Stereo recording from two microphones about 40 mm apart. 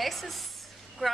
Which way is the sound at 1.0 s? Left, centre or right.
Centre.